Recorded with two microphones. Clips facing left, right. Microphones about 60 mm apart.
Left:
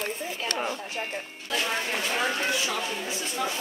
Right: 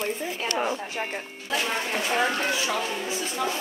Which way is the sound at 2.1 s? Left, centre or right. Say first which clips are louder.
Right 3 dB; centre.